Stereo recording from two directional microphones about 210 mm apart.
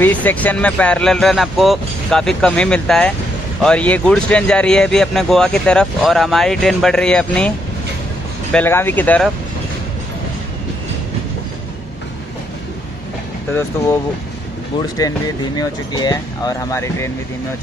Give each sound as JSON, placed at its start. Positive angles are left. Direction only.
{"t": 0.0, "sound": "speech", "side_deg": 5}
{"t": 8.5, "sound": "speech", "side_deg": 10}
{"t": 13.5, "sound": "speech", "side_deg": 10}
{"t": 15.0, "sound": "speech", "side_deg": 15}